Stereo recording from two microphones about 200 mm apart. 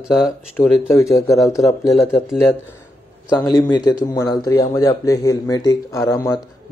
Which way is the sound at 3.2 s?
20° left (ahead or behind).